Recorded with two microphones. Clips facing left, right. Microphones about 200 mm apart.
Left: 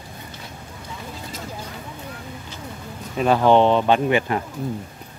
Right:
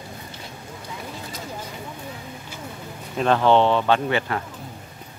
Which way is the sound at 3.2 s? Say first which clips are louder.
Left 2 dB; 10° left (ahead or behind).